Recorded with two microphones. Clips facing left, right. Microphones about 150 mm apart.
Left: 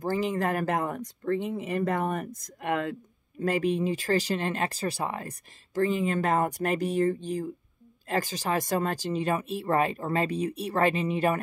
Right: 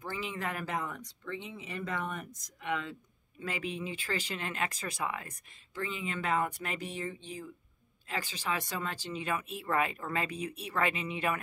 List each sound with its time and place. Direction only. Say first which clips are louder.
0.0 s speech: left 10 dB; 40° left (ahead or behind)